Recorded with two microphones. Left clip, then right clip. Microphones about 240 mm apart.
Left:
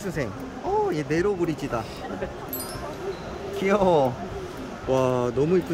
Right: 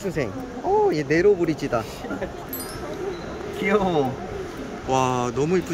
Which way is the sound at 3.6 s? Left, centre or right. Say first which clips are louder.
Left 1 dB; centre.